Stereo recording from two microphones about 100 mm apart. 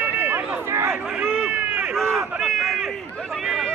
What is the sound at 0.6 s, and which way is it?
Speech, 25° right (ahead or behind).